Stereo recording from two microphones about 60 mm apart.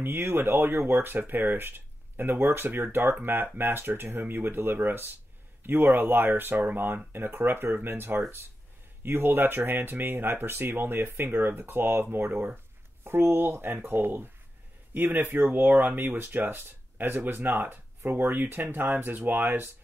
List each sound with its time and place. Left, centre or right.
0.0 s speech: right